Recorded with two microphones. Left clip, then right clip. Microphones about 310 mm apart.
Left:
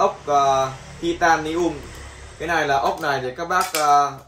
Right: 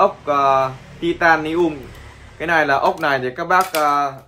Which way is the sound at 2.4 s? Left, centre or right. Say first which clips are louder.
Right 4 dB; right.